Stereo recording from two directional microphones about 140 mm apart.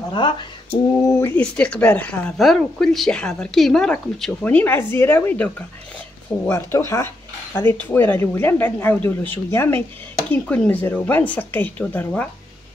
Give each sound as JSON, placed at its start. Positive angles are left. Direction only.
{"t": 0.1, "sound": "speech", "side_deg": 35}
{"t": 1.0, "sound": "speech", "side_deg": 15}